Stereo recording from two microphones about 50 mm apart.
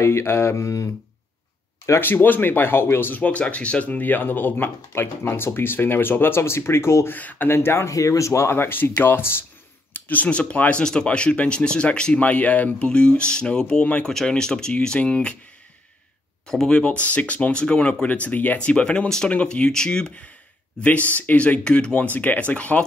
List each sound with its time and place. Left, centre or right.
0.0 s speech: left
2.1 s speech: left
3.2 s speech: left
7.1 s speech: left
7.4 s speech: left
8.0 s speech: left
9.9 s speech: left
10.8 s speech: centre
12.7 s speech: left
16.4 s speech: centre
18.0 s speech: left; by 20.2 s centre
20.8 s speech: left
22.1 s speech: left